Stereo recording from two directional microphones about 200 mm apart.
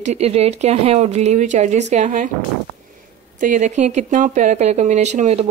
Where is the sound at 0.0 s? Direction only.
35° right (ahead or behind).